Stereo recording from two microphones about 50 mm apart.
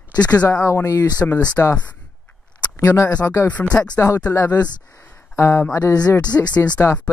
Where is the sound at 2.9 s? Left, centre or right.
Left.